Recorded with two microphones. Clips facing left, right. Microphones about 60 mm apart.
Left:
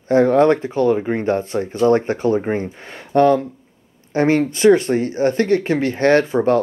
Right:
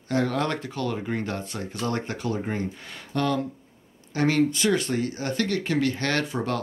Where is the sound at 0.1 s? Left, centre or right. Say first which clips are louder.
Left 12 dB; left.